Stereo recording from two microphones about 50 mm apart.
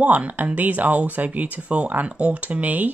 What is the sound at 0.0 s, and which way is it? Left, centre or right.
Speech, right.